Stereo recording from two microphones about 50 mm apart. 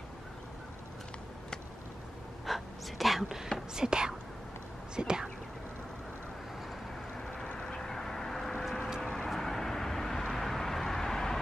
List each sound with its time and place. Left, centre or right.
2.4 s a sound: centre
3.7 s speech: centre
4.9 s whispering: centre
7.5 s vehicle: centre